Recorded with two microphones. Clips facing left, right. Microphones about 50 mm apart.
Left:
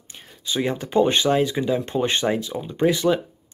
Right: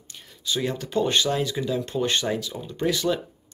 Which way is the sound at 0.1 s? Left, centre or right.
Left.